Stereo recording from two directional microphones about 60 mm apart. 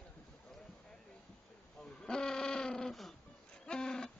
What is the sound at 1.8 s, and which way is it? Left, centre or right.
Bleat, centre.